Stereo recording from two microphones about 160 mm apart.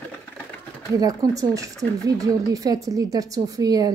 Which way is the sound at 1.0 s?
20° right (ahead or behind).